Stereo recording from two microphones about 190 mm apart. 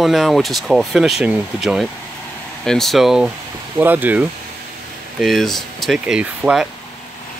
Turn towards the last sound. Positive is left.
turn(degrees=-5)  # may be behind; listen again after turning